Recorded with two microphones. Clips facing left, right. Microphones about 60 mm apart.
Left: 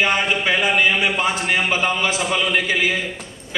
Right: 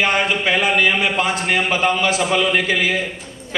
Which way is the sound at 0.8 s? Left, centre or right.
Left.